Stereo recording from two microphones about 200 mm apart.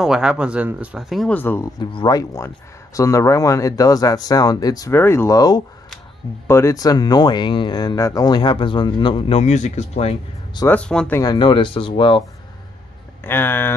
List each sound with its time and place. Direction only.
0.0 s speech: 5° right (ahead or behind)
1.8 s speech: 25° left (ahead or behind)
10.6 s speech: 5° left (ahead or behind)
11.1 s speech: 20° left (ahead or behind)
13.2 s speech: 10° left (ahead or behind)